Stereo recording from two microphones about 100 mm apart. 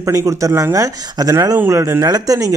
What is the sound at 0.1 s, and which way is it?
Speech, 30° right (ahead or behind).